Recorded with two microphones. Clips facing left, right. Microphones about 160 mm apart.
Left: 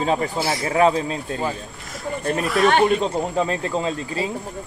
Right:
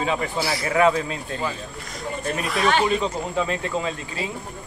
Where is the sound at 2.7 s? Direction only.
55° left (ahead or behind).